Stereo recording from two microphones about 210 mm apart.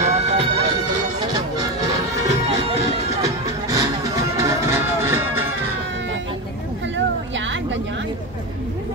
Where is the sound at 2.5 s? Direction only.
30° right (ahead or behind).